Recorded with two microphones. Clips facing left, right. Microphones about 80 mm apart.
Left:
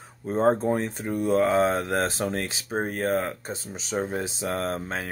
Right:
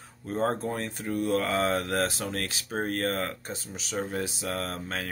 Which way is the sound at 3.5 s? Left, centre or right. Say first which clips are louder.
Left 4 dB; left.